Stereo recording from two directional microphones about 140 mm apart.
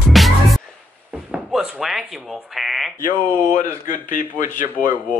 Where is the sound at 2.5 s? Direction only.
Centre (ahead or behind).